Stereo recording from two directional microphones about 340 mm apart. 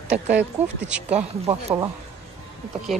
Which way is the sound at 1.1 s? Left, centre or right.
Centre.